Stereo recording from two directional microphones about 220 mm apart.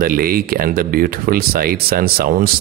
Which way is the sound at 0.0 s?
40° right (ahead or behind).